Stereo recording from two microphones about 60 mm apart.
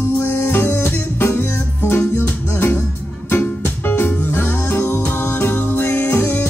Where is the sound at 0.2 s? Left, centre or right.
Left.